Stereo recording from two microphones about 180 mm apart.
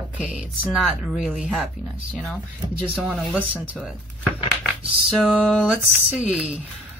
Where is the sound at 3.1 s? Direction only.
5° right (ahead or behind).